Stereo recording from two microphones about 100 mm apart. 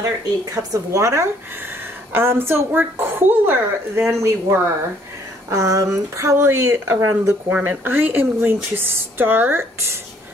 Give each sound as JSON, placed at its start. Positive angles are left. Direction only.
{"t": 0.5, "sound": "speech", "side_deg": -30}
{"t": 7.4, "sound": "speech", "side_deg": -15}